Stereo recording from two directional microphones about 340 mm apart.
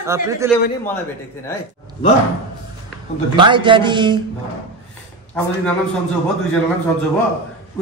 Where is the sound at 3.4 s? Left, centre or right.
Centre.